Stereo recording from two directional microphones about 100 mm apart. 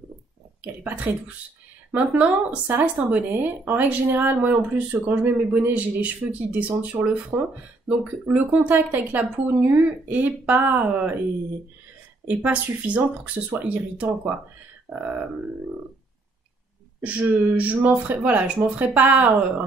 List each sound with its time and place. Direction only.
0.6 s speech: 15° right (ahead or behind)
12.3 s speech: 15° right (ahead or behind)
17.0 s speech: 15° right (ahead or behind)